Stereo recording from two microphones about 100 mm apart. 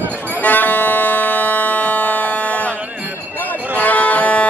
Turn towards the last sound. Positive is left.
turn(degrees=15)  # may be behind; listen again after turning